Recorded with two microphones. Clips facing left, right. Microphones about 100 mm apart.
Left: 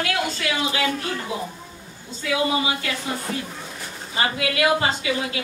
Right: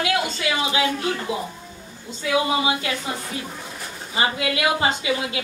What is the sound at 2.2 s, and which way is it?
Speech, 25° right (ahead or behind).